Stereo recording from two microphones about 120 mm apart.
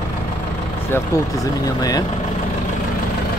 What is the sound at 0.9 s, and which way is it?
Speech, 30° left (ahead or behind).